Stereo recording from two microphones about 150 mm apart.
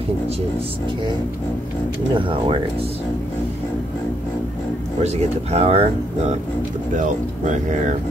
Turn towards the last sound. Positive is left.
turn(degrees=-55)  # may be behind; listen again after turning